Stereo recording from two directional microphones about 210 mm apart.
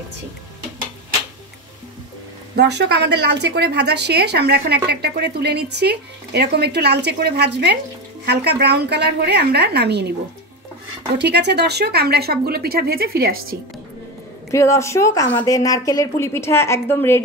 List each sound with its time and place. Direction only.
2.5 s speech: 55° right (ahead or behind)
11.1 s speech: 55° right (ahead or behind)
14.5 s a woman's voice: 15° left (ahead or behind)